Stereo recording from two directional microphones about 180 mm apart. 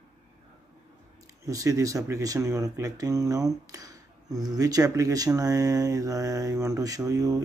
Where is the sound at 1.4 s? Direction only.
20° right (ahead or behind).